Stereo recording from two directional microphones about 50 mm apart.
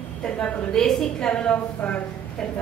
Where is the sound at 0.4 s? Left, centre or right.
Centre.